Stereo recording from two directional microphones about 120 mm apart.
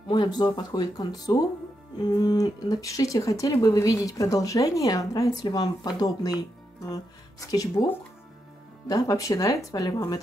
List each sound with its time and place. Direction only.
0.1 s speech: 35° left (ahead or behind)
8.8 s speech: 30° left (ahead or behind)